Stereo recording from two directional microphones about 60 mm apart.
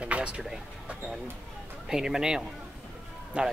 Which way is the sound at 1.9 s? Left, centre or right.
Centre.